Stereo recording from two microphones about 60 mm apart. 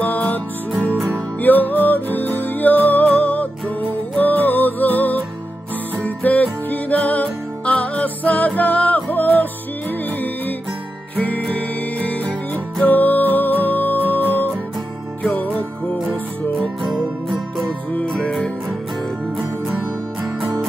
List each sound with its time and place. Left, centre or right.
0.0 s music: left
1.4 s music: left
11.5 s music: left
16.8 s music: centre